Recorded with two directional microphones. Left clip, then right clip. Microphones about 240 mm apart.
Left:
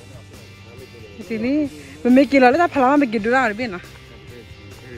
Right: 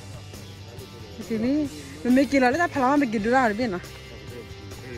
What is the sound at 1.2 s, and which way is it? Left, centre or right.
Music, centre.